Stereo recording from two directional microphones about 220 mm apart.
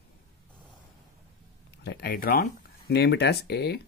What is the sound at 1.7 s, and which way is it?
Speech, 50° left (ahead or behind).